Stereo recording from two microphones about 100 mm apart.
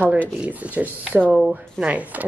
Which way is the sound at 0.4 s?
15° right (ahead or behind).